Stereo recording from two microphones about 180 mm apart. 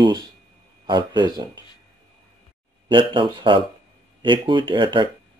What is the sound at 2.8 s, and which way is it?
Speech, 25° right (ahead or behind).